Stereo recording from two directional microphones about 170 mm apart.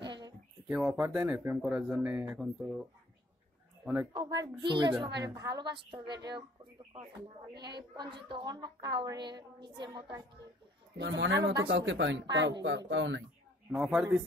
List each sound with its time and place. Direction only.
0.0 s a sound: 25° right (ahead or behind)
0.7 s speech: 5° right (ahead or behind)
4.1 s a woman's voice: 25° right (ahead or behind)
7.9 s a woman's voice: 25° right (ahead or behind)
11.0 s speech: 90° right
13.7 s speech: 5° right (ahead or behind)